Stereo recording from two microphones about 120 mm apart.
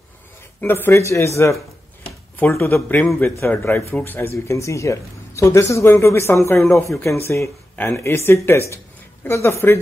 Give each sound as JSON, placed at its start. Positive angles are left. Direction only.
{"t": 0.6, "sound": "speech", "side_deg": 15}